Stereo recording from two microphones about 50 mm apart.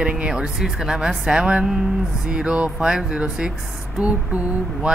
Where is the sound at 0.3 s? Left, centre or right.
Centre.